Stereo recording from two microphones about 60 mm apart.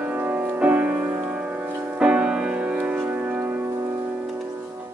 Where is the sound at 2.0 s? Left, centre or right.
Right.